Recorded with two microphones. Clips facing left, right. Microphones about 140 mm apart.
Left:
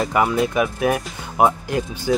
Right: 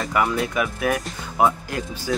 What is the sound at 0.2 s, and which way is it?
Speech, 25° left (ahead or behind).